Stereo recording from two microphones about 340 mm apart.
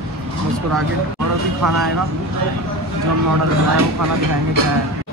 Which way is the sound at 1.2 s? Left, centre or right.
Right.